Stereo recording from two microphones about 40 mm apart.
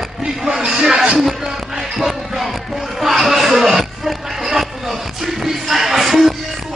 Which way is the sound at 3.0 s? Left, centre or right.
Centre.